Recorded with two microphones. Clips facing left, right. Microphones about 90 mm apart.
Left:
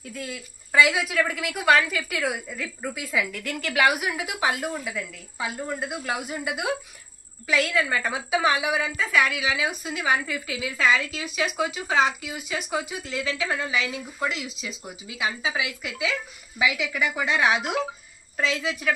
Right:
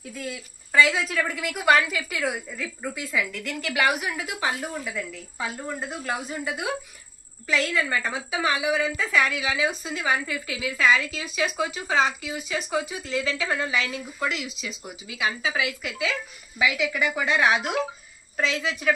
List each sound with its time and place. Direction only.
0.1 s a woman's voice: centre (ahead or behind)
0.7 s a woman's voice: 10° left (ahead or behind)
4.8 s a woman's voice: 5° left (ahead or behind)
14.3 s speech: 30° left (ahead or behind)
15.5 s a woman's voice: 10° left (ahead or behind)